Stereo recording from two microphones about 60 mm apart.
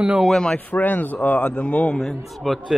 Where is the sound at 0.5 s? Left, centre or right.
Left.